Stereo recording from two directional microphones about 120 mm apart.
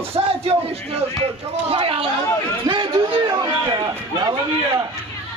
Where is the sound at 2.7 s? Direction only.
40° right (ahead or behind).